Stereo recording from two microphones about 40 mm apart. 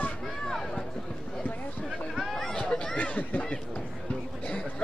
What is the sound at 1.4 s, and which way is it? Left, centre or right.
Speech, left.